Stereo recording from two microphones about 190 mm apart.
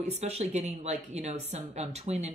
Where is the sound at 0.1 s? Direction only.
35° right (ahead or behind).